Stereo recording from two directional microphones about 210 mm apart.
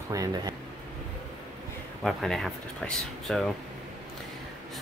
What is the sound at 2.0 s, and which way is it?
Speech, centre (ahead or behind).